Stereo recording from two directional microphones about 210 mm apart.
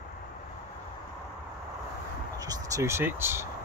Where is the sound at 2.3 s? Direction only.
15° right (ahead or behind).